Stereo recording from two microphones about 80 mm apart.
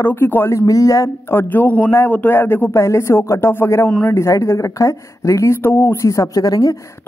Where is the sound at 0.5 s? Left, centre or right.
Left.